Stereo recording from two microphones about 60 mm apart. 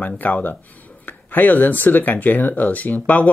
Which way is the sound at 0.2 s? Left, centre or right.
Left.